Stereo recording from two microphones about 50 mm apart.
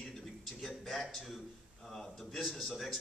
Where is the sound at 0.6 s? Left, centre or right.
Centre.